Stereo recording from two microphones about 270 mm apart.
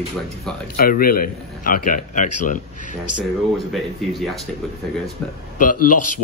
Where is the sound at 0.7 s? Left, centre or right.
Left.